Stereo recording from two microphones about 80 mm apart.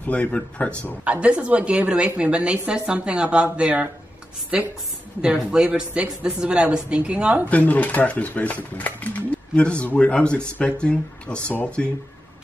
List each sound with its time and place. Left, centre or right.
0.0 s speech: centre
1.0 s a woman's voice: centre
7.4 s speech: centre